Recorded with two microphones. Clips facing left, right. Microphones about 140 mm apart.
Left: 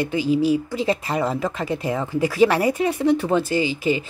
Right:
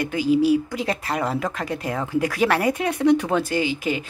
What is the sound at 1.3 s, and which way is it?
Speech, centre (ahead or behind).